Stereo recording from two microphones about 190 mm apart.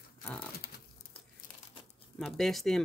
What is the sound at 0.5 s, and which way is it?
Crumpling, 55° left (ahead or behind).